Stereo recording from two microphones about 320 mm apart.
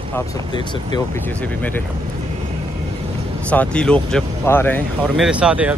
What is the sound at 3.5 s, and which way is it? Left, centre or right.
Speech, centre.